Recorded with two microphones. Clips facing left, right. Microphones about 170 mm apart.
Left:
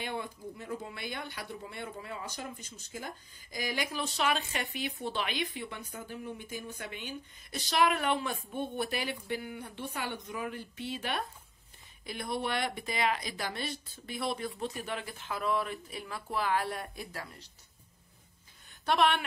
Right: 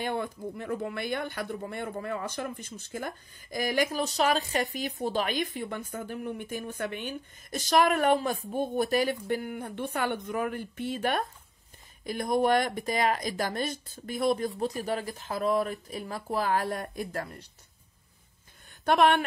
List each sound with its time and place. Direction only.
0.0 s speech: 50° right (ahead or behind)
18.9 s speech: 50° right (ahead or behind)